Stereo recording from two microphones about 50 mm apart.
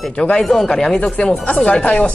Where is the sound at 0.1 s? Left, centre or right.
Centre.